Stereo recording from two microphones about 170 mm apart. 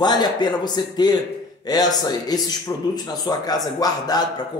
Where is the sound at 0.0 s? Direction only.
25° left (ahead or behind).